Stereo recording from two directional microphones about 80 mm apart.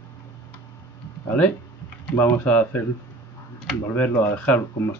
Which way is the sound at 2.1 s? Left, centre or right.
Left.